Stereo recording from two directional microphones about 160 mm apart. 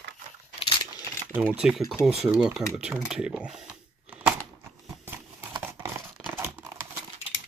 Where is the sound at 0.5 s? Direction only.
30° left (ahead or behind).